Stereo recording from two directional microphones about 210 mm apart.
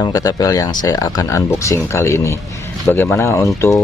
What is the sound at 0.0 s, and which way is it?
Speech, 15° left (ahead or behind).